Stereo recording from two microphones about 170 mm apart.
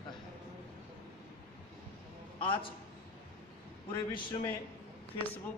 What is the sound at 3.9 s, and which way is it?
Speech, 30° left (ahead or behind).